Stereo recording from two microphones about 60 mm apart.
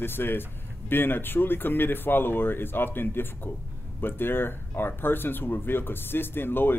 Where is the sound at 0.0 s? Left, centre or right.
Left.